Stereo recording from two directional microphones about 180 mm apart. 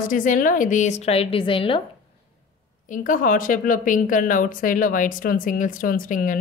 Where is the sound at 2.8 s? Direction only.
45° left (ahead or behind).